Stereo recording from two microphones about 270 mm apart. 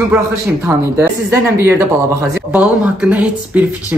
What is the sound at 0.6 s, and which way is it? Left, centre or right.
Speech, centre.